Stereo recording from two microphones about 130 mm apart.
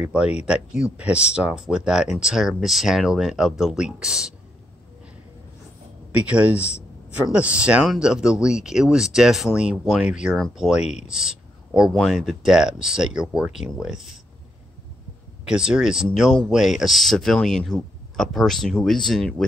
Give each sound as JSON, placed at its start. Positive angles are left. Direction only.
{"t": 0.0, "sound": "speech", "side_deg": -10}
{"t": 6.1, "sound": "speech", "side_deg": -10}
{"t": 11.1, "sound": "a sound", "side_deg": -5}
{"t": 11.9, "sound": "speech", "side_deg": 0}
{"t": 15.4, "sound": "speech", "side_deg": -5}